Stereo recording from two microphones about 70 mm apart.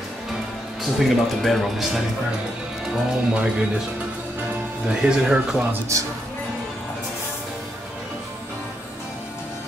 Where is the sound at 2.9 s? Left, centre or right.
Centre.